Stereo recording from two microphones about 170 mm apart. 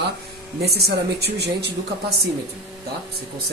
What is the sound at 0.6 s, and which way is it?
Speech, 70° right (ahead or behind).